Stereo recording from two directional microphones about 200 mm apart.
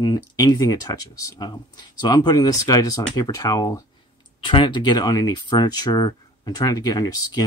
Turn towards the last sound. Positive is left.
turn(degrees=20)  # may be behind; listen again after turning